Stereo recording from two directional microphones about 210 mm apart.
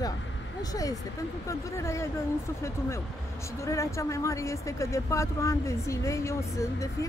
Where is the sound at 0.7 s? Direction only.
15° left (ahead or behind).